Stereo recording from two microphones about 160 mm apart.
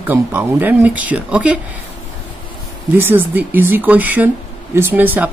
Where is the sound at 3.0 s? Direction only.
10° right (ahead or behind).